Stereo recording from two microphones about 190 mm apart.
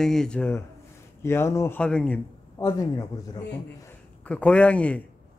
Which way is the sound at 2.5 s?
20° left (ahead or behind).